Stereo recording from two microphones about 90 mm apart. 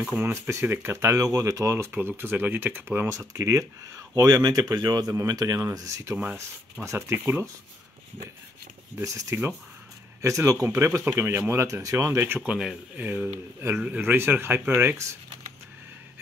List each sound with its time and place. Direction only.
0.0 s speech: 20° right (ahead or behind)
1.9 s speech: 25° right (ahead or behind)
3.1 s speech: 35° right (ahead or behind)
9.0 s speech: 30° right (ahead or behind)
12.4 s speech: 10° right (ahead or behind)
14.1 s speech: 25° right (ahead or behind)